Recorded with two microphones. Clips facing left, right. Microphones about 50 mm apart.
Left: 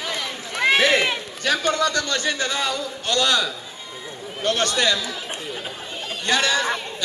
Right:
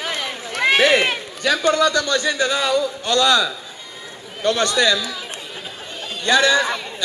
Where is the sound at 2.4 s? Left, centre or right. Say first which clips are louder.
Right 5 dB; right.